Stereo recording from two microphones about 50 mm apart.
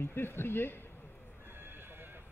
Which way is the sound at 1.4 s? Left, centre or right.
Right.